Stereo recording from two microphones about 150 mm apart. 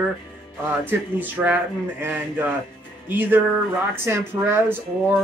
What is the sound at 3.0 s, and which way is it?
Music, 10° right (ahead or behind).